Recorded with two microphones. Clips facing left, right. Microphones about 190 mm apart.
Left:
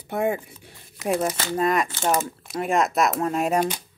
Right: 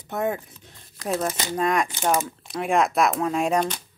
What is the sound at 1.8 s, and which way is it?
Speech, 15° right (ahead or behind).